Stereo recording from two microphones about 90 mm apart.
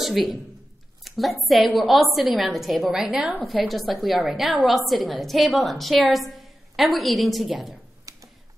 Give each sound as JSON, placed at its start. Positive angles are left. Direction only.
{"t": 0.0, "sound": "a man's voice", "side_deg": 0}
{"t": 3.6, "sound": "a woman's voice", "side_deg": 0}
{"t": 8.0, "sound": "a sound", "side_deg": -40}